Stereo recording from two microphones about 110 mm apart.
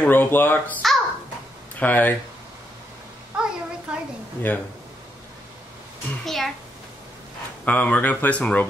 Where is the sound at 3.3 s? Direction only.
10° right (ahead or behind).